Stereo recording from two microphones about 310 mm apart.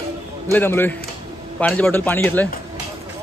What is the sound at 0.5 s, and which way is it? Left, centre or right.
A man's voice, centre.